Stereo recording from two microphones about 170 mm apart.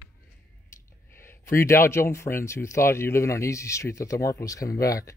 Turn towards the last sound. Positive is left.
turn(degrees=20)  # may be behind; listen again after turning